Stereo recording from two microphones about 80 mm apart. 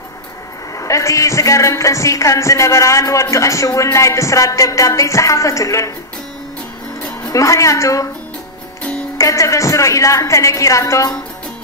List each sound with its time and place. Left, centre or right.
0.7 s a man's voice: left
7.2 s a woman's voice: left
9.2 s a man's voice: left